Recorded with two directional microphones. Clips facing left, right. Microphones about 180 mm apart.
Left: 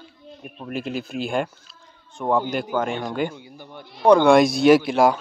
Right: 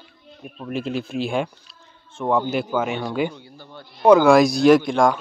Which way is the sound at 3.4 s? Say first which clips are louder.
Left 1 dB; 15° left (ahead or behind).